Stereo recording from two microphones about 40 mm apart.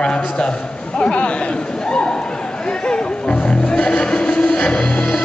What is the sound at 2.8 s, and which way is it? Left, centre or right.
Music, left.